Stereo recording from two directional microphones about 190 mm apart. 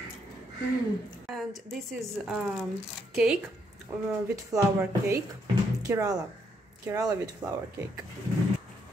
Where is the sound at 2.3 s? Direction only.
Centre (ahead or behind); by 7.6 s 20° right (ahead or behind).